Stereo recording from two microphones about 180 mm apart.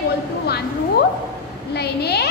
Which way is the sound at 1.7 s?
65° left (ahead or behind).